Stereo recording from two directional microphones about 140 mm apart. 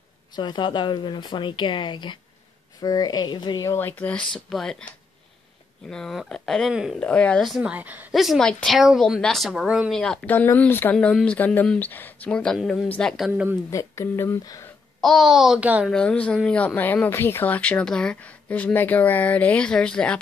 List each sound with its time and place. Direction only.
0.4 s speech: 35° left (ahead or behind)
3.7 s speech: 10° left (ahead or behind)
5.9 s speech: 5° left (ahead or behind)
7.0 s speech: 10° left (ahead or behind); by 8.1 s 10° right (ahead or behind)
8.1 s speech: centre (ahead or behind)
12.8 s speech: 10° left (ahead or behind)
13.3 s speech: 10° right (ahead or behind)
13.7 s speech: 20° left (ahead or behind)
15.0 s speech: centre (ahead or behind)
15.9 s speech: 5° left (ahead or behind)